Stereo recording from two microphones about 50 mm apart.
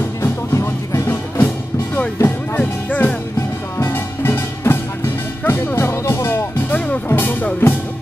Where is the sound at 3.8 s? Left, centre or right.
Left.